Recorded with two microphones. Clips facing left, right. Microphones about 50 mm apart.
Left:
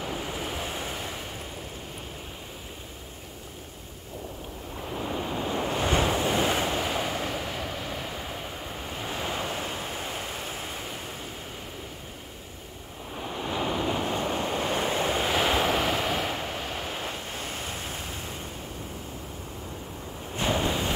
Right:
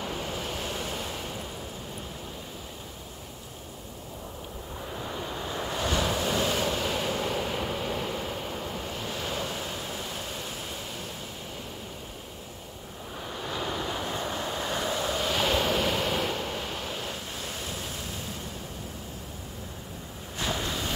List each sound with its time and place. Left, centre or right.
4.9 s waves: centre
6.9 s waves: centre
9.0 s waves: left
13.3 s waves: centre
14.1 s waves: left
15.4 s waves: centre
17.1 s vehicle: left
20.3 s waves: left